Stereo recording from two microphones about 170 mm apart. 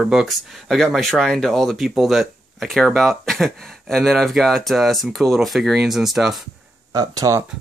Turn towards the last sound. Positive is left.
turn(degrees=-20)  # may be behind; listen again after turning